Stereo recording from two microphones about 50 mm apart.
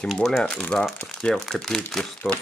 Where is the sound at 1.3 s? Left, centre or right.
Centre.